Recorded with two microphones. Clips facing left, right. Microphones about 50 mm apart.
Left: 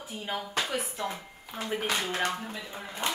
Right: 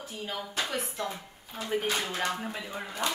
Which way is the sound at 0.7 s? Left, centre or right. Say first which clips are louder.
Left 1 dB; centre.